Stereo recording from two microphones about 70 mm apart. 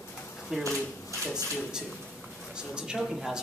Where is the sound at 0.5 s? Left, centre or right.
Centre.